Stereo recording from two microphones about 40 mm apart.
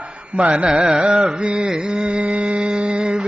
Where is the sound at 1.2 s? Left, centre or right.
Right.